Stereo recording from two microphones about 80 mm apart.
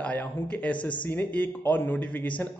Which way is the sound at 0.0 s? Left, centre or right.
Centre.